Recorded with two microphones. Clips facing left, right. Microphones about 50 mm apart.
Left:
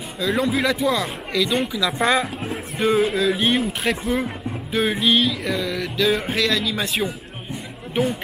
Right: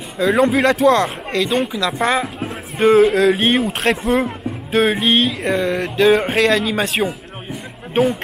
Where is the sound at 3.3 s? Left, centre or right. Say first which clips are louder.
Right 4 dB; right.